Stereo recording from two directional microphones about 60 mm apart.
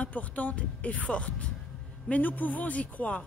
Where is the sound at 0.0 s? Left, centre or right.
Left.